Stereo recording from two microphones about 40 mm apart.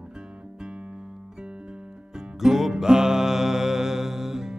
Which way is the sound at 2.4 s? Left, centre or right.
Centre.